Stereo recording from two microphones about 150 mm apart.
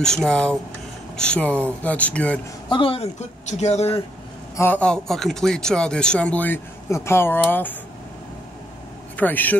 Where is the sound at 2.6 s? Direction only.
35° left (ahead or behind).